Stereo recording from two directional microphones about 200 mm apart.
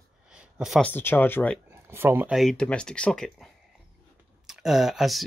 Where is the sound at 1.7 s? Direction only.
10° right (ahead or behind).